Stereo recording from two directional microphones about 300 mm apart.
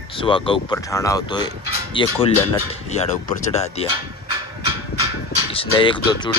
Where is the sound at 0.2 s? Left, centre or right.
Centre.